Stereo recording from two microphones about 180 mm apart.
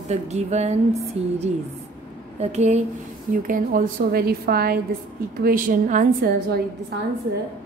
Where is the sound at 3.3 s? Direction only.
50° right (ahead or behind).